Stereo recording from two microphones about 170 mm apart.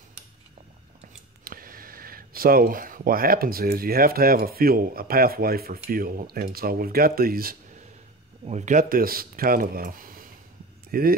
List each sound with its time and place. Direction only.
1.4 s speech: 55° right (ahead or behind)
8.5 s speech: 45° right (ahead or behind)